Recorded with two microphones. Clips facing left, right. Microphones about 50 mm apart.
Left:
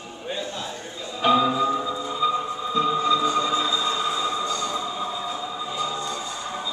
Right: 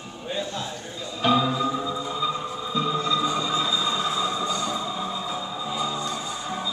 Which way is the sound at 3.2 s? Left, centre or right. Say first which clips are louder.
Left 2 dB; centre.